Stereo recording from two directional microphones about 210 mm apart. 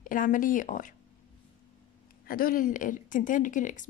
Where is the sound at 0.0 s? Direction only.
40° left (ahead or behind).